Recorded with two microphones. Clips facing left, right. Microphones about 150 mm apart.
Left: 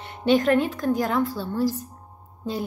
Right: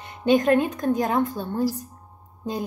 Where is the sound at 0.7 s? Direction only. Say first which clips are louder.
Right 1 dB; 20° right (ahead or behind).